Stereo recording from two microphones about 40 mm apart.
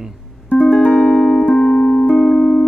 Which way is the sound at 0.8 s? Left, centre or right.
Left.